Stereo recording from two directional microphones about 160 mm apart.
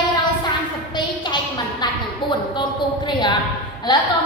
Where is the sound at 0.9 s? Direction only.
30° left (ahead or behind).